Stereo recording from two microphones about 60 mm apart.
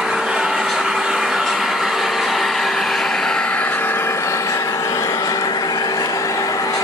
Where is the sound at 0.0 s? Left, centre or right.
Centre.